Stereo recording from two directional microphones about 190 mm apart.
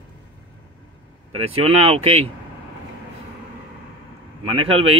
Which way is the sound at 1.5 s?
30° right (ahead or behind).